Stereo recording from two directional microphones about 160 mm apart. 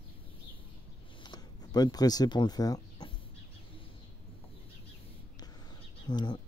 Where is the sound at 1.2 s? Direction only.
25° left (ahead or behind).